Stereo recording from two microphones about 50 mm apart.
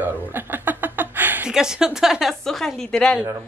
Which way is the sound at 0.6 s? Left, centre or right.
Right.